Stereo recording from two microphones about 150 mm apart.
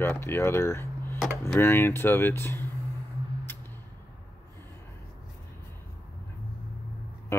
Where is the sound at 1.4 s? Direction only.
15° left (ahead or behind).